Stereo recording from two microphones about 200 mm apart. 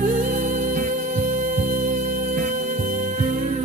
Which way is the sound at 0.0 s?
40° right (ahead or behind).